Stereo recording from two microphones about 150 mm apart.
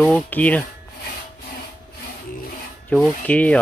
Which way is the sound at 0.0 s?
10° left (ahead or behind).